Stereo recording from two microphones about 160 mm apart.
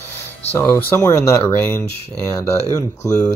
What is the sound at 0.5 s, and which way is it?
Speech, 15° left (ahead or behind).